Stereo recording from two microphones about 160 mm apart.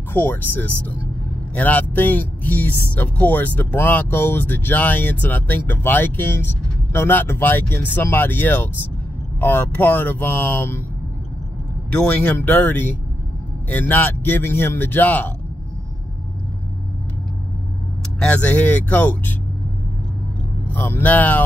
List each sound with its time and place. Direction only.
0.1 s speech: 15° left (ahead or behind)
11.9 s speech: 10° left (ahead or behind)
18.2 s speech: 10° left (ahead or behind)
20.7 s speech: 10° left (ahead or behind)